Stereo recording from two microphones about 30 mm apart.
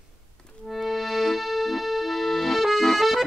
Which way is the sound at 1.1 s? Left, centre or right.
Centre.